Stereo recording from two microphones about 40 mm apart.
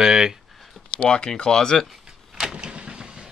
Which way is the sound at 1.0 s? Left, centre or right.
Left.